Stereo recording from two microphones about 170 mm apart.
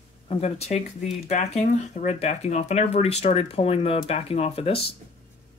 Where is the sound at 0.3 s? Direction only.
40° left (ahead or behind).